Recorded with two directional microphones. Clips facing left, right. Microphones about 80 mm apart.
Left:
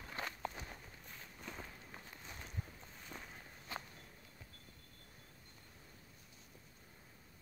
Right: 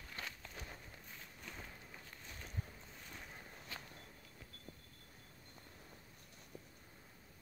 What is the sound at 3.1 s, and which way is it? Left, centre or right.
Walk, centre.